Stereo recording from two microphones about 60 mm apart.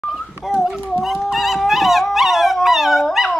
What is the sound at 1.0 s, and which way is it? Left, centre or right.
Dog, centre.